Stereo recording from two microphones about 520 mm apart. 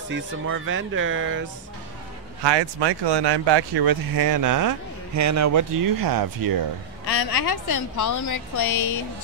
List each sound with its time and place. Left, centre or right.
0.1 s speech: right
2.4 s speech: right
7.4 s a woman's voice: left